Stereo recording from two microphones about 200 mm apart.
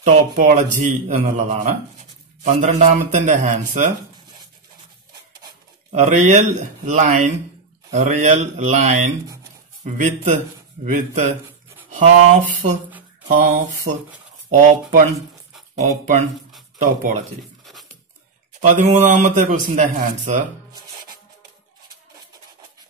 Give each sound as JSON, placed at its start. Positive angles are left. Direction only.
{"t": 0.0, "sound": "a man's voice", "side_deg": -35}
{"t": 5.9, "sound": "a man's voice", "side_deg": -35}
{"t": 14.6, "sound": "a man's voice", "side_deg": -40}
{"t": 16.7, "sound": "speech", "side_deg": -40}
{"t": 18.6, "sound": "a man's voice", "side_deg": -40}